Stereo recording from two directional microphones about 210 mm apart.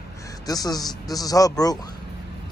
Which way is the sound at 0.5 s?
20° left (ahead or behind).